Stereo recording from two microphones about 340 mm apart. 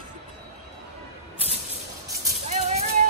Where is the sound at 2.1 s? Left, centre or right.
Centre.